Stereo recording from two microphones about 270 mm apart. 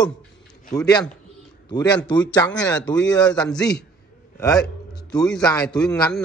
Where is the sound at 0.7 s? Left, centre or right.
Centre.